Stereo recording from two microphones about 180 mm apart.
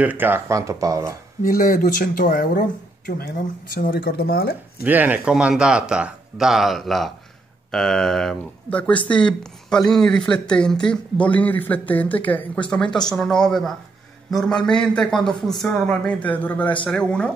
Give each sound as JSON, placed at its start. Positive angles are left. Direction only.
{"t": 0.0, "sound": "speech", "side_deg": -10}
{"t": 1.4, "sound": "speech", "side_deg": 50}
{"t": 3.7, "sound": "speech", "side_deg": 60}
{"t": 4.8, "sound": "speech", "side_deg": -10}